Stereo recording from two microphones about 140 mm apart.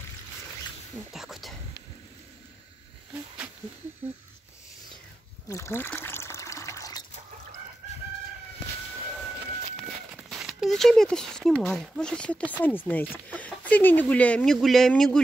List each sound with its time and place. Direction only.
1.1 s speech: centre (ahead or behind)
5.5 s water: 20° left (ahead or behind)
10.1 s speech: 5° right (ahead or behind)